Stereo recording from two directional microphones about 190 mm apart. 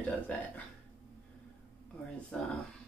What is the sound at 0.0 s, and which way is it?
Speech, 5° left (ahead or behind).